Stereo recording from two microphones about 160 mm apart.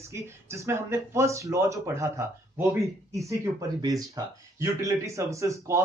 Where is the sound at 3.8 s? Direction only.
20° right (ahead or behind).